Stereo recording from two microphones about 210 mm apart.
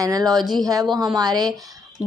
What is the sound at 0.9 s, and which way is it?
Speech, 20° right (ahead or behind).